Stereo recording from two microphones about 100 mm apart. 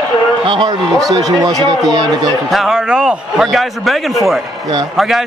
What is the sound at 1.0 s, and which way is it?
Speech, 35° right (ahead or behind).